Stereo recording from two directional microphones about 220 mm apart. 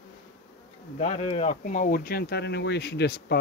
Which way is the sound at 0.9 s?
25° left (ahead or behind).